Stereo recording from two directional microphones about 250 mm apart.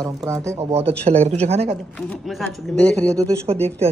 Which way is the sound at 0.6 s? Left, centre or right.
Right.